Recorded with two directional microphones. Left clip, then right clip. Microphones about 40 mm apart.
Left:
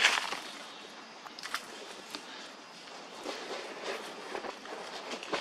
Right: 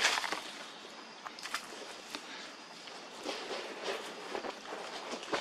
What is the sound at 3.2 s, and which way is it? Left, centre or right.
Train, centre.